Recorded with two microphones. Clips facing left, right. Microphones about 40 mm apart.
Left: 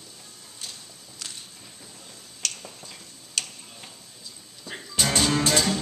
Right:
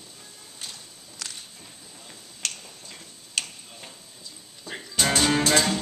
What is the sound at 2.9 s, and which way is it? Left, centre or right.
Tick-tock, centre.